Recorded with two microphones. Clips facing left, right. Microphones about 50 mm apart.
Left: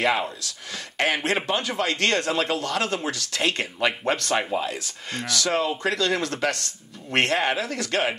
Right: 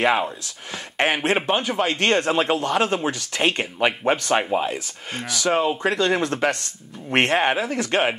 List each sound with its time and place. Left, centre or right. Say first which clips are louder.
0.9 s speech: right 3 dB; right